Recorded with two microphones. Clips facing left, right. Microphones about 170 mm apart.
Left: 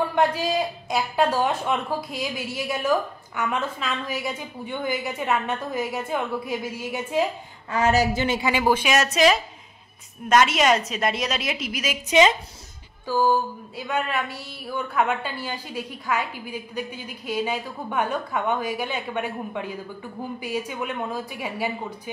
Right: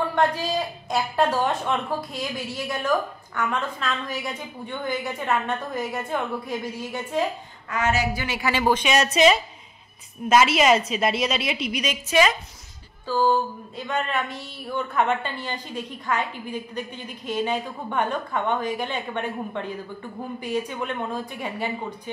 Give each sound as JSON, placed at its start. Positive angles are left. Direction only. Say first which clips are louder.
{"t": 0.8, "sound": "a woman's voice", "louder": "right 1 dB", "side_deg": 0}
{"t": 7.7, "sound": "a woman's voice", "louder": "left 3 dB", "side_deg": 35}
{"t": 8.1, "sound": "a woman's voice", "louder": "left 3 dB", "side_deg": 25}
{"t": 12.1, "sound": "a woman's voice", "louder": "left 3 dB", "side_deg": 20}
{"t": 13.0, "sound": "speech", "louder": "even", "side_deg": 10}